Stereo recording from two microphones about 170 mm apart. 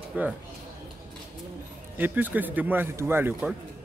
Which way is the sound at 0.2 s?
10° right (ahead or behind).